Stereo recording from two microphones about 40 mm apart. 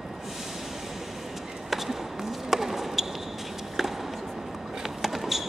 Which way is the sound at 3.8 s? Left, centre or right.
Centre.